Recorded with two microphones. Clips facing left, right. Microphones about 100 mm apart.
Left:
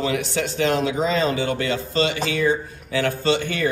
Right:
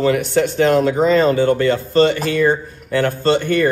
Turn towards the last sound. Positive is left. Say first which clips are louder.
# right 6 dB
turn(degrees=-50)  # may be behind; listen again after turning